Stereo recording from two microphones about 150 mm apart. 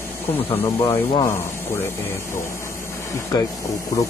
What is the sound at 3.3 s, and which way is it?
Speech, 25° left (ahead or behind).